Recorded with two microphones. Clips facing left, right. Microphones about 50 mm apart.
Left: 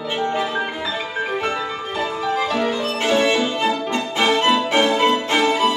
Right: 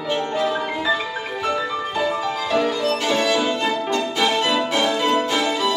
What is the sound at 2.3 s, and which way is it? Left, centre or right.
Music, left.